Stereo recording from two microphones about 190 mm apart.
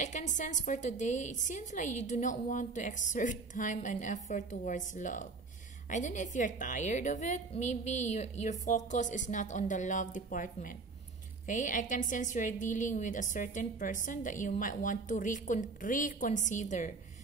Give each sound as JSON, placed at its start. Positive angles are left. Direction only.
{"t": 0.0, "sound": "a woman's voice", "side_deg": 40}